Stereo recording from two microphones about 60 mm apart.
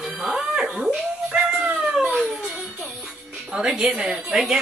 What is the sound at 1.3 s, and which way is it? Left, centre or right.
Dog, centre.